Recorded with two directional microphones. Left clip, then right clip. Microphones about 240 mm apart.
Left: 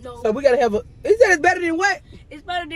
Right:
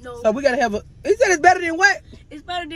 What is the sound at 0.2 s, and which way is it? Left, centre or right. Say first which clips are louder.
A man's voice: left 1 dB; centre.